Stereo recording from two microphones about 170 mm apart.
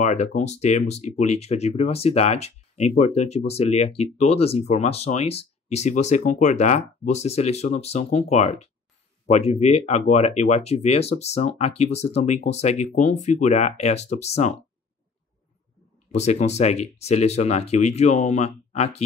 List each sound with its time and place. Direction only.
0.0 s speech: 45° left (ahead or behind)
16.1 s speech: 40° left (ahead or behind)